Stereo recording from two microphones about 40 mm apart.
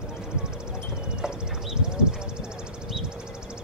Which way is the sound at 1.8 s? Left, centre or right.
Centre.